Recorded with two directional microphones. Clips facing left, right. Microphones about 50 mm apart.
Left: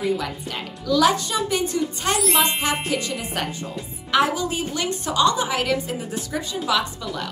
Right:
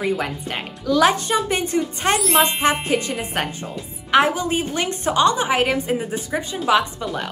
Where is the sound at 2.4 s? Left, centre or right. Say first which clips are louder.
Right 4 dB; right.